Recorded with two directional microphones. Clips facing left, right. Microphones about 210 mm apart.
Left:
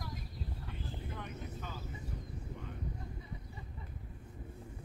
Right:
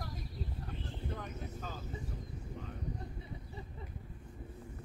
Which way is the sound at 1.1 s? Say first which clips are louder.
Right 1 dB; 40° right (ahead or behind).